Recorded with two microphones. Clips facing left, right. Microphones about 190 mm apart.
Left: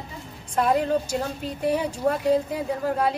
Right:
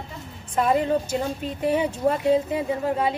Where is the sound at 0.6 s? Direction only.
Centre (ahead or behind).